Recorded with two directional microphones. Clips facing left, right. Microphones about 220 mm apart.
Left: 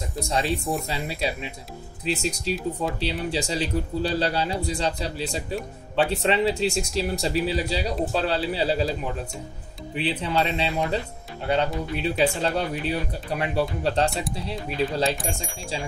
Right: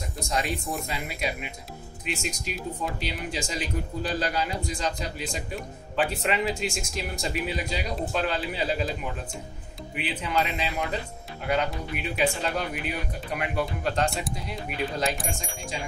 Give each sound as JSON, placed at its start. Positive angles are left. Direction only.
{"t": 0.7, "sound": "speech", "side_deg": 30}
{"t": 9.9, "sound": "speech", "side_deg": 30}
{"t": 15.0, "sound": "speech", "side_deg": 0}